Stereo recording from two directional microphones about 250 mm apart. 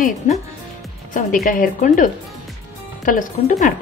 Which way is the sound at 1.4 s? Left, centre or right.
Left.